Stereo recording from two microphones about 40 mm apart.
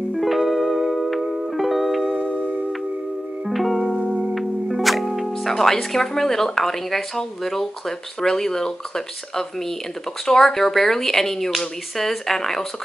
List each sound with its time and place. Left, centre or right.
0.1 s music: centre
2.1 s music: right
3.4 s music: centre
4.2 s speech: centre